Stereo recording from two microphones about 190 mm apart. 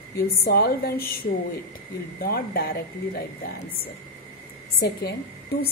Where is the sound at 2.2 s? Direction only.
55° left (ahead or behind).